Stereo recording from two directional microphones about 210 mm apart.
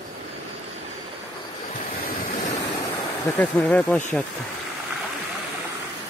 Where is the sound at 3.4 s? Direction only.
5° left (ahead or behind).